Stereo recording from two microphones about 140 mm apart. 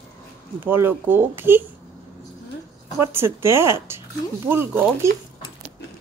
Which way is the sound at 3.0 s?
15° right (ahead or behind).